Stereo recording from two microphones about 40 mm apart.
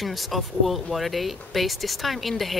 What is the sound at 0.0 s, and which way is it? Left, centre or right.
Speech, centre.